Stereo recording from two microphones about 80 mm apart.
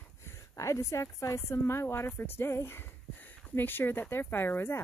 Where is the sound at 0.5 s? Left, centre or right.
Left.